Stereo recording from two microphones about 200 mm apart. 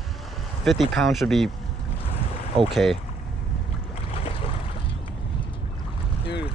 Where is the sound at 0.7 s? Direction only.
Centre (ahead or behind).